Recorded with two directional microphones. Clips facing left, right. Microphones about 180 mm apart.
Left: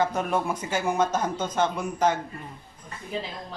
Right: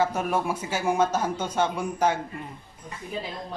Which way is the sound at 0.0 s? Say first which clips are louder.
Even; 5° right (ahead or behind).